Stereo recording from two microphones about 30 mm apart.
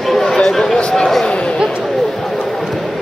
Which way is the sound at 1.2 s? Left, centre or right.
Left.